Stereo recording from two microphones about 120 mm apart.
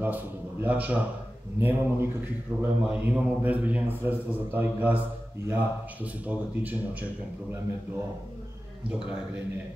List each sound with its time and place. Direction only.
0.0 s a man's voice: 15° right (ahead or behind)
6.2 s a man's voice: 15° right (ahead or behind)